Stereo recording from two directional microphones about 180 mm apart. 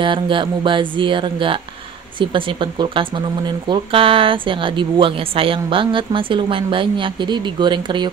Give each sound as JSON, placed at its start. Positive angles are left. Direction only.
{"t": 0.0, "sound": "speech", "side_deg": -25}